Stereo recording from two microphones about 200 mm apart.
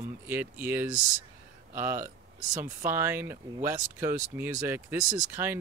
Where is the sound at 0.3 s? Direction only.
10° right (ahead or behind).